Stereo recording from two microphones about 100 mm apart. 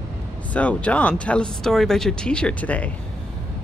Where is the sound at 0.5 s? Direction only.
15° left (ahead or behind).